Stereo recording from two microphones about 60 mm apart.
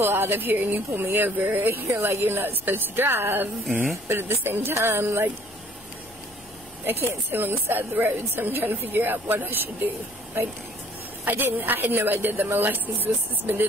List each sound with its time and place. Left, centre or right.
0.0 s a woman's voice: right
6.9 s a woman's voice: right